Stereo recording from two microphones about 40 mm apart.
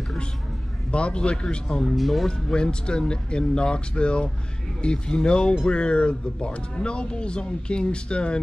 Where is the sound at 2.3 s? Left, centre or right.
Left.